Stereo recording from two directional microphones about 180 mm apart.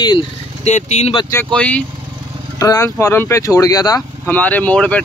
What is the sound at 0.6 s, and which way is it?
Speech, 40° left (ahead or behind).